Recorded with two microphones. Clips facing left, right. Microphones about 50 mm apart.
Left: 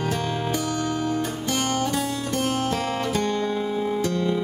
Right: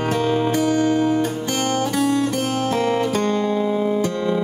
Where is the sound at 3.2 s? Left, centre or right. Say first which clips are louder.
Right 4 dB; right.